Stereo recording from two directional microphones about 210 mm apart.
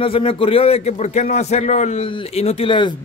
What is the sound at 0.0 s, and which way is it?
A man's voice, 25° left (ahead or behind).